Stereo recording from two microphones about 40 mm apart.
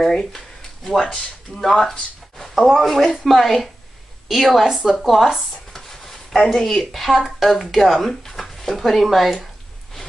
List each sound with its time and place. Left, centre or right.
0.0 s speech: centre
5.7 s a sound: centre
7.2 s speech: centre